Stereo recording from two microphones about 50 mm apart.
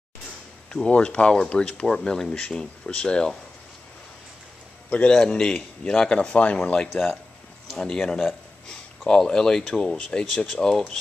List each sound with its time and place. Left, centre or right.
0.8 s speech: left
4.8 s a man's voice: left
5.1 s speech: centre
6.9 s speech: centre
7.7 s speech: centre